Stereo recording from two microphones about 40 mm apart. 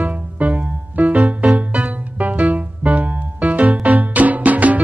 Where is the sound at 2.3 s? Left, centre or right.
Right.